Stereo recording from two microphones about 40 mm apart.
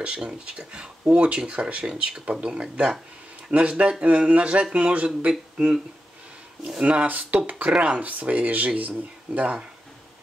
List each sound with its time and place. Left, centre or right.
0.0 s speech: right
6.8 s speech: right
7.1 s speech: right